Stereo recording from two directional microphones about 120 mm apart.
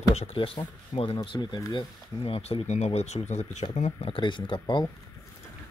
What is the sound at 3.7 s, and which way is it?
Speech, 60° left (ahead or behind).